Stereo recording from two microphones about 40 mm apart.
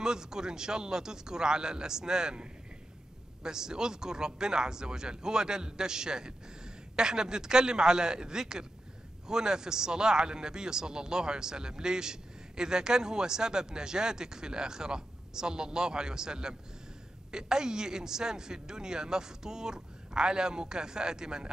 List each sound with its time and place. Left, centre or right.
0.0 s speech: centre
3.4 s speech: centre